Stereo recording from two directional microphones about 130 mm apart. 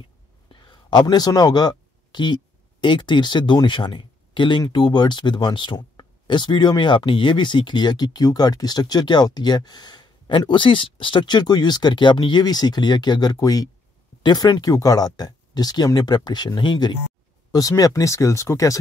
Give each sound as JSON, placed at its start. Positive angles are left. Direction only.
{"t": 0.5, "sound": "speech", "side_deg": 35}